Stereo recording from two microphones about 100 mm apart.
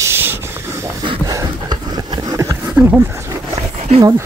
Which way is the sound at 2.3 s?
30° right (ahead or behind).